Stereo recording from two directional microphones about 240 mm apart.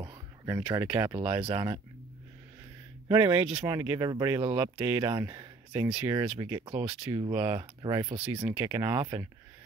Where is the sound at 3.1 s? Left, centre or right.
Right.